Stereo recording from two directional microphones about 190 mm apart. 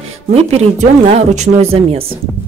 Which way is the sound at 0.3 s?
35° right (ahead or behind).